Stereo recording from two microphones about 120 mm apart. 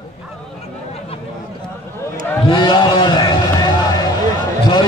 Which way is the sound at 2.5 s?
40° left (ahead or behind).